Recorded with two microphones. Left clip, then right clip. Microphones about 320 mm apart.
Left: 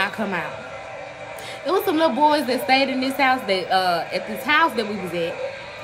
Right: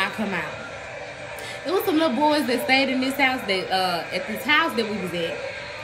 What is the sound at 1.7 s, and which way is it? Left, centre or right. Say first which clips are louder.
A woman's voice: left 2 dB; centre.